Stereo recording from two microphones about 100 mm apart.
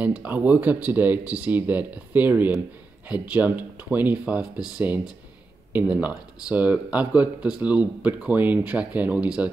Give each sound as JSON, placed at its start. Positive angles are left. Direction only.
{"t": 0.0, "sound": "speech", "side_deg": -15}